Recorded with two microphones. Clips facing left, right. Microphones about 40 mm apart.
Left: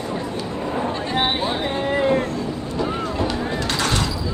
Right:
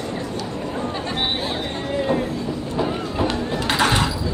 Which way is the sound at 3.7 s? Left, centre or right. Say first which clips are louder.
Right 5 dB; right.